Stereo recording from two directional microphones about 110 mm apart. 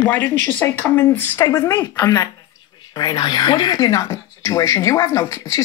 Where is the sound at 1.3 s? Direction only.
35° left (ahead or behind).